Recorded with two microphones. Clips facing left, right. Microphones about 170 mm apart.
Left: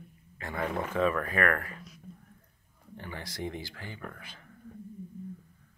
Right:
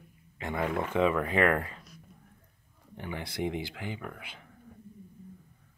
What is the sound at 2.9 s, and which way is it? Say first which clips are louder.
Speech: right 4 dB; 15° right (ahead or behind).